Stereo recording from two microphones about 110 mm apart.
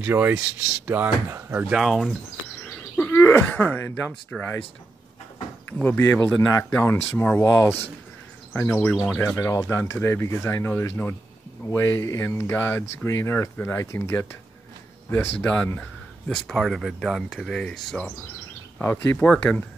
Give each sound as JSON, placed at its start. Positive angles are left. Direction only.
{"t": 0.0, "sound": "speech", "side_deg": -20}
{"t": 1.7, "sound": "speech", "side_deg": -5}
{"t": 2.6, "sound": "a sound", "side_deg": 15}
{"t": 4.4, "sound": "speech", "side_deg": 15}
{"t": 5.7, "sound": "speech", "side_deg": 15}
{"t": 9.5, "sound": "speech", "side_deg": 30}
{"t": 15.4, "sound": "speech", "side_deg": 15}
{"t": 18.8, "sound": "speech", "side_deg": 20}
{"t": 19.1, "sound": "speech", "side_deg": 5}